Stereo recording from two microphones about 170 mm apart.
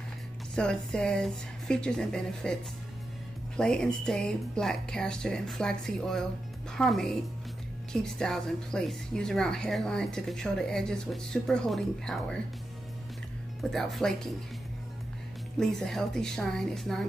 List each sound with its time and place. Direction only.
0.6 s speech: 5° left (ahead or behind)
3.5 s speech: 5° left (ahead or behind)
13.6 s speech: centre (ahead or behind)
15.6 s speech: centre (ahead or behind)